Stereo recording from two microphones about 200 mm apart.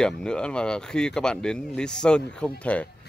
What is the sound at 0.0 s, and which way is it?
Speech, 5° left (ahead or behind).